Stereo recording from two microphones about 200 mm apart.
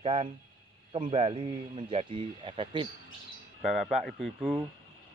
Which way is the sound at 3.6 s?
5° right (ahead or behind).